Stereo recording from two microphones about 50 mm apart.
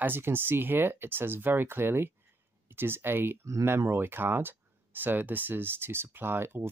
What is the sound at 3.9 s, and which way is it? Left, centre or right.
Speech, right.